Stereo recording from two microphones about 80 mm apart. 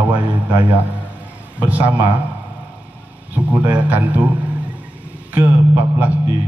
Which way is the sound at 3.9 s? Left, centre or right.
Centre.